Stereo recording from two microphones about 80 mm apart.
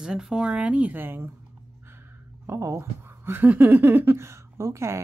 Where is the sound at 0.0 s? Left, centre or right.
Centre; by 1.3 s right.